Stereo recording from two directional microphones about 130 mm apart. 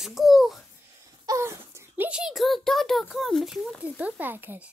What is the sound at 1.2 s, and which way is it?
Wail, 25° right (ahead or behind).